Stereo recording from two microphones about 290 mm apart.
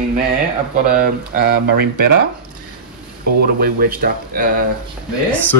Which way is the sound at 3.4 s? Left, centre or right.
Right.